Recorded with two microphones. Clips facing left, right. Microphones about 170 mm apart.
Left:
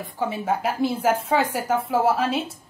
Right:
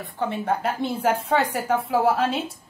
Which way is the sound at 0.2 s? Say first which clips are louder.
Even; 5° left (ahead or behind).